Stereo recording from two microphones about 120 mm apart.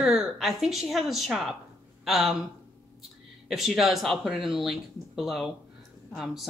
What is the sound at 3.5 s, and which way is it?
Speech, centre (ahead or behind).